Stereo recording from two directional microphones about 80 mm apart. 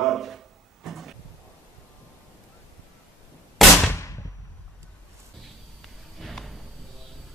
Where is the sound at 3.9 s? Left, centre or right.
Left.